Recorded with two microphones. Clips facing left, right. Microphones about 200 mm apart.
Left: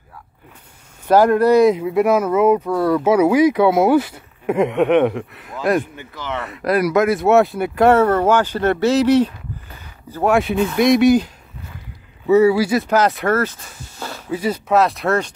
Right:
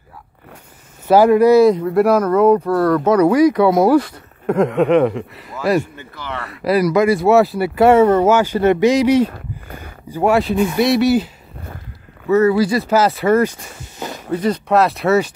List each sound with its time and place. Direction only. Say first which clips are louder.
1.0 s speech: right 3 dB; 10° right (ahead or behind)
1.7 s speech: right 2 dB; 5° left (ahead or behind)
5.8 s speech: right 2 dB; 15° left (ahead or behind)
6.8 s speech: right 2 dB; centre (ahead or behind)
9.3 s a sound: right 4 dB; 55° right (ahead or behind)
10.0 s speech: right 1 dB; 10° right (ahead or behind)
12.3 s speech: left 1 dB; 10° left (ahead or behind)
12.9 s speech: right 4 dB; 5° right (ahead or behind)
13.9 s a sound: right 3 dB; 15° right (ahead or behind)
14.3 s speech: right 2 dB; 5° left (ahead or behind)